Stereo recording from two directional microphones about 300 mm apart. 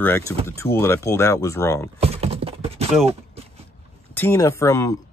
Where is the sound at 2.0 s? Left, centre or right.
Centre.